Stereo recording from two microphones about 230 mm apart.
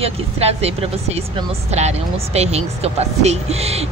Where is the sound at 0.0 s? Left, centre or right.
Right.